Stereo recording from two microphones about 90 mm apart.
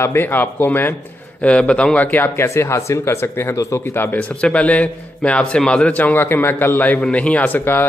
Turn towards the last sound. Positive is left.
turn(degrees=20)  # may be behind; listen again after turning